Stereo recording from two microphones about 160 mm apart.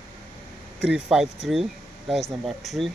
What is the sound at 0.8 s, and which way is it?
Speech, 5° right (ahead or behind).